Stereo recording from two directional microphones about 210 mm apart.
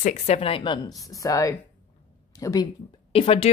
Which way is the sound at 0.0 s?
30° left (ahead or behind).